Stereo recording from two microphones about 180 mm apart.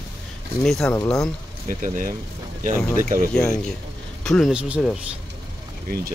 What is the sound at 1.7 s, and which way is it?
Speech, 45° right (ahead or behind).